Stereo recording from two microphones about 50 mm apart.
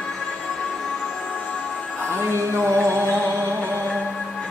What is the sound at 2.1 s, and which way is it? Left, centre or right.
Music, right.